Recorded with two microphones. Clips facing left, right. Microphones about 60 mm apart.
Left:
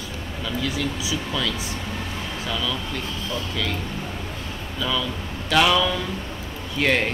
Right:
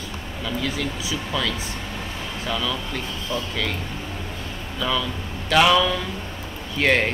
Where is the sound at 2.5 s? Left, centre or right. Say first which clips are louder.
Right 2 dB; centre.